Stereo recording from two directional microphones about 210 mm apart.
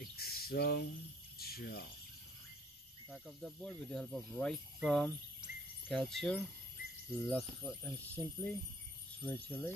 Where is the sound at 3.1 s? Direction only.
Centre (ahead or behind).